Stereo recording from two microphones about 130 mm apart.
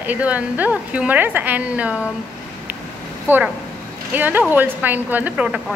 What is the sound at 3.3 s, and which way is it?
Speech, 15° right (ahead or behind).